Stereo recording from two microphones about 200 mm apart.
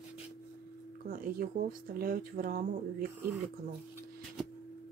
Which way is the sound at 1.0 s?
45° right (ahead or behind).